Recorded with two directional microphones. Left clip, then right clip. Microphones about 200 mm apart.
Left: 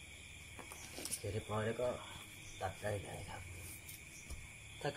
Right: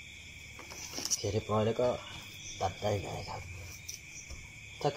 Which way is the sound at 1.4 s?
20° right (ahead or behind).